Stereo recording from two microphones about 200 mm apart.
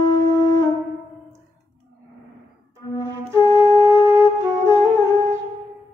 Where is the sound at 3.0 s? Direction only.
15° right (ahead or behind).